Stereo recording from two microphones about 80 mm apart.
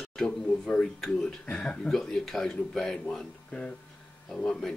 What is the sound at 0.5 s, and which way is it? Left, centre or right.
Speech, centre.